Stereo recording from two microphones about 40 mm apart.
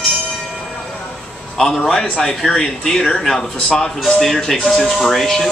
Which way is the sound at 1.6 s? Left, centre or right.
Centre.